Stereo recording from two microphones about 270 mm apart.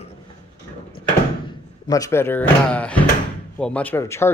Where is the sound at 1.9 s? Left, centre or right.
Centre.